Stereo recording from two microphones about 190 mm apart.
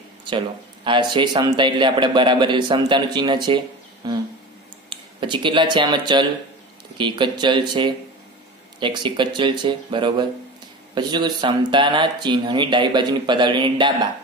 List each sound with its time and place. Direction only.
0.8 s a man's voice: 25° right (ahead or behind)